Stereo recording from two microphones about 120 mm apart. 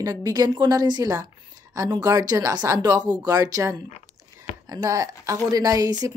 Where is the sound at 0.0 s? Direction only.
30° right (ahead or behind).